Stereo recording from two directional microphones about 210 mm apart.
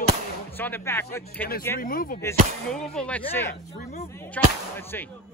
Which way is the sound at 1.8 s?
40° left (ahead or behind).